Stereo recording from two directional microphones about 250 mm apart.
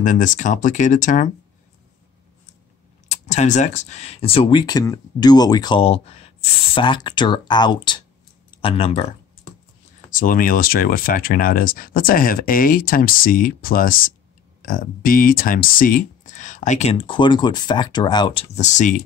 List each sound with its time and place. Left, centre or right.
0.0 s speech: left
3.1 s speech: left
10.1 s speech: left